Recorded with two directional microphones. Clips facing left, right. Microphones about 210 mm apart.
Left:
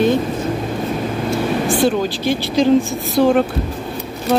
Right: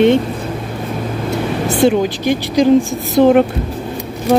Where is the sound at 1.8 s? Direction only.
15° right (ahead or behind).